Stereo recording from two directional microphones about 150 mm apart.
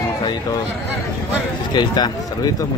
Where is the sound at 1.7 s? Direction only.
30° left (ahead or behind).